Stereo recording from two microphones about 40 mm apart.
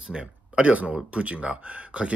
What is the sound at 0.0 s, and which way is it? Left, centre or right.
Speech, right.